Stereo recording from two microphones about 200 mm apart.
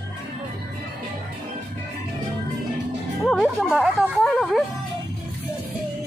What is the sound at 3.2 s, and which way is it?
Music, centre (ahead or behind).